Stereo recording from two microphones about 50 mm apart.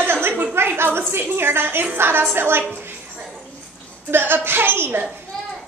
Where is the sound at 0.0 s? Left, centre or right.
Right.